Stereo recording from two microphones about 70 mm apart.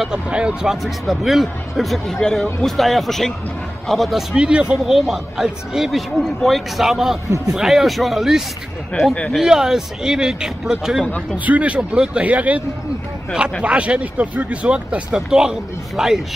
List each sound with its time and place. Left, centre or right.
0.0 s speech: centre
4.4 s speech: centre
4.8 s speech: centre
9.0 s speech: left
9.3 s speech: centre
11.3 s speech: right